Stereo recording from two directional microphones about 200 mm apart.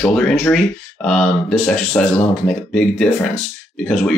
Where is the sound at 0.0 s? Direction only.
5° left (ahead or behind).